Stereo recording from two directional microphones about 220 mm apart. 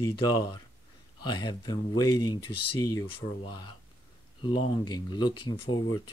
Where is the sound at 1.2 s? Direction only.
20° left (ahead or behind).